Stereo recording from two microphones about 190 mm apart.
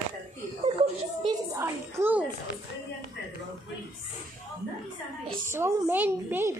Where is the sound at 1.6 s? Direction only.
15° right (ahead or behind).